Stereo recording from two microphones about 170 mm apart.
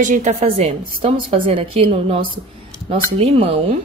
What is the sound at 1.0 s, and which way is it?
A woman's voice, 30° right (ahead or behind).